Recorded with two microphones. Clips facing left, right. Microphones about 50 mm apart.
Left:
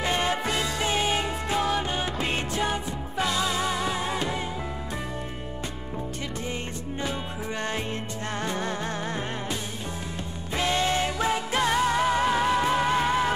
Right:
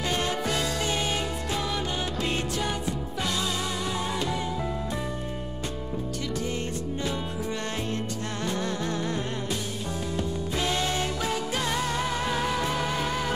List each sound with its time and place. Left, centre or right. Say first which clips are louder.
0.0 s music: left 2 dB; left
8.5 s music: right 2 dB; left
10.6 s music: left 4 dB; left